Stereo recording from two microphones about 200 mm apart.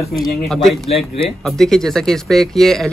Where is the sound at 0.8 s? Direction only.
30° left (ahead or behind).